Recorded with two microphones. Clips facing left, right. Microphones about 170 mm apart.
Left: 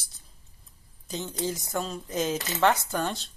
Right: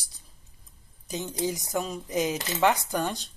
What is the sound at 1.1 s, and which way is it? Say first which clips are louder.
Speech: right 1 dB; 15° right (ahead or behind).